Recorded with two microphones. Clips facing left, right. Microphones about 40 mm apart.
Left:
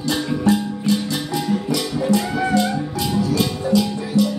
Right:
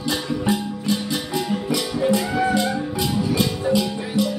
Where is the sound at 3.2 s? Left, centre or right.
Right.